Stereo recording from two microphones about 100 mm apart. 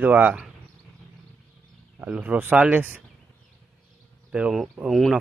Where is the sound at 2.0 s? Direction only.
15° right (ahead or behind).